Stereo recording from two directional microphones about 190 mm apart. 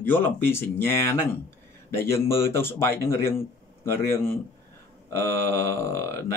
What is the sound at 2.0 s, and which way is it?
Speech, 15° left (ahead or behind).